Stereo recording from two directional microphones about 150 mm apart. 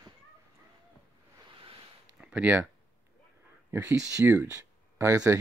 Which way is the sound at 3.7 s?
20° right (ahead or behind).